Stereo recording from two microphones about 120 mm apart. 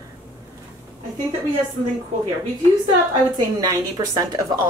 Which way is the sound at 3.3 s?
35° right (ahead or behind).